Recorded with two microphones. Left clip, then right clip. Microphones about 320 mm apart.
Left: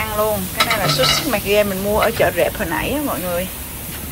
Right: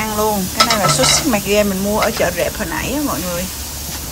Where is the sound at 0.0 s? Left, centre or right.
Centre.